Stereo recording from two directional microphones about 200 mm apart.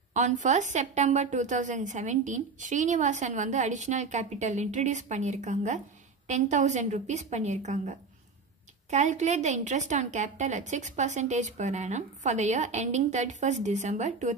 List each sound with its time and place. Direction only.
0.1 s a woman's voice: 35° right (ahead or behind)